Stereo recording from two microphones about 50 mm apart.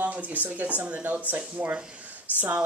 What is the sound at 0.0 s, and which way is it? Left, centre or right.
Speech, right.